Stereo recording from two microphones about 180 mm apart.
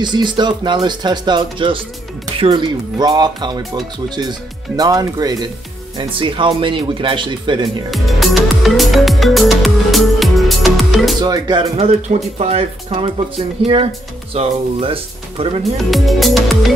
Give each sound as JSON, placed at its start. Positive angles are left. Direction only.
{"t": 0.0, "sound": "speech", "side_deg": -25}
{"t": 4.7, "sound": "speech", "side_deg": -20}
{"t": 7.9, "sound": "music", "side_deg": 0}
{"t": 11.1, "sound": "speech", "side_deg": -20}
{"t": 11.7, "sound": "speech", "side_deg": -35}
{"t": 15.6, "sound": "speech", "side_deg": 0}